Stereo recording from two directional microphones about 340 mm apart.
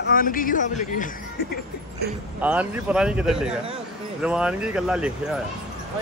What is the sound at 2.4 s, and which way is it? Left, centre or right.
Speech, centre.